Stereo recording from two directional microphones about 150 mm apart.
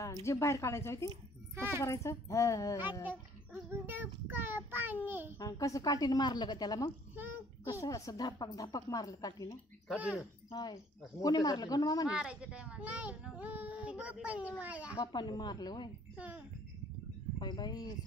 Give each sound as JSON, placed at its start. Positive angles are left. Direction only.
{"t": 0.0, "sound": "a woman's voice", "side_deg": 20}
{"t": 1.5, "sound": "speech", "side_deg": -15}
{"t": 1.8, "sound": "a woman's voice", "side_deg": 20}
{"t": 3.8, "sound": "a child's voice", "side_deg": -15}
{"t": 5.4, "sound": "a woman's voice", "side_deg": 25}
{"t": 9.8, "sound": "a child's voice", "side_deg": -5}
{"t": 10.5, "sound": "a woman's voice", "side_deg": 25}
{"t": 12.1, "sound": "a child's voice", "side_deg": -5}
{"t": 15.0, "sound": "a woman's voice", "side_deg": 30}
{"t": 16.2, "sound": "a child's voice", "side_deg": -10}
{"t": 17.4, "sound": "a woman's voice", "side_deg": 30}